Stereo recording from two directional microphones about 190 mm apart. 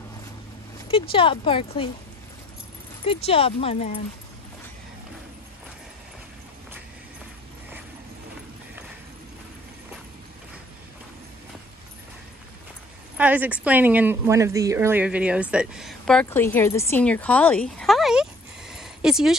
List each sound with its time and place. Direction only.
0.8 s speech: 25° left (ahead or behind)
3.1 s speech: 30° left (ahead or behind)
13.2 s a woman's voice: 10° right (ahead or behind)
18.7 s a sound: centre (ahead or behind)